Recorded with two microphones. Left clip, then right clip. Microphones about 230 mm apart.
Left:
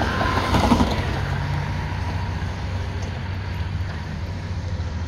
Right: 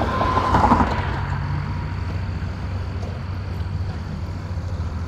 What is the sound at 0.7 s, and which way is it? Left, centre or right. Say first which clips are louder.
Mechanisms: right 2 dB; left.